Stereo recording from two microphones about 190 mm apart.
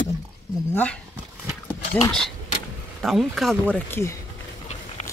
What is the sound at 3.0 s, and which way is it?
Speech, centre (ahead or behind).